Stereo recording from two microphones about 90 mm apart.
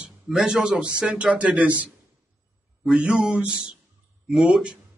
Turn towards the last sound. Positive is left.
turn(degrees=-10)  # may be behind; listen again after turning